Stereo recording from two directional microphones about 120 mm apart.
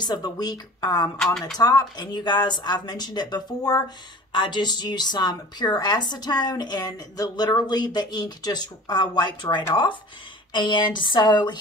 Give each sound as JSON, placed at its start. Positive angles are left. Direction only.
{"t": 0.0, "sound": "speech", "side_deg": 35}